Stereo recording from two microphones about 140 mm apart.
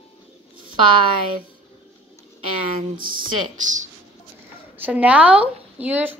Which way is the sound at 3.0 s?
90° right.